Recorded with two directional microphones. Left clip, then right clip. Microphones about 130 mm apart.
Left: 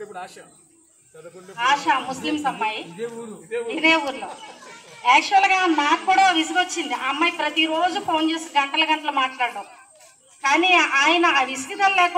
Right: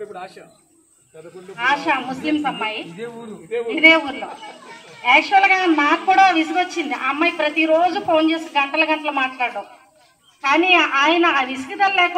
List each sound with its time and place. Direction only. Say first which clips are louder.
0.1 s speech: right 2 dB; 10° right (ahead or behind)
1.6 s a man's voice: right 1 dB; 15° right (ahead or behind)
10.5 s a man's voice: right 2 dB; 10° right (ahead or behind)